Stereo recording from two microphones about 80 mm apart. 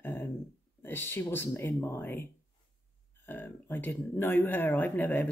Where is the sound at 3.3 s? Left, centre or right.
Left.